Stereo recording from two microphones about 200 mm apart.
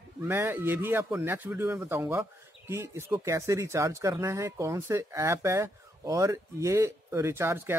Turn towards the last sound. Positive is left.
turn(degrees=-10)  # may be behind; listen again after turning